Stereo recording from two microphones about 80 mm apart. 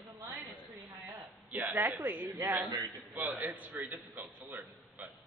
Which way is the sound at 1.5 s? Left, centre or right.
Right.